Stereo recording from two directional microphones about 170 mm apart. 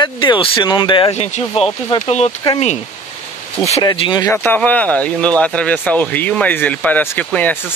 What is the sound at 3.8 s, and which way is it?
Speech, 25° left (ahead or behind).